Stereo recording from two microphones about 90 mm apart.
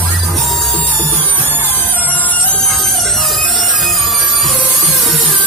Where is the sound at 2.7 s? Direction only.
Centre (ahead or behind).